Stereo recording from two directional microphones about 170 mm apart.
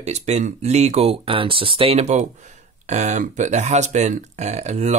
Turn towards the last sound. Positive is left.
turn(degrees=-40)  # may be behind; listen again after turning